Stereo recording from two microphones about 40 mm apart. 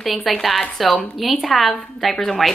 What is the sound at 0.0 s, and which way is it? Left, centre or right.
A woman's voice, centre.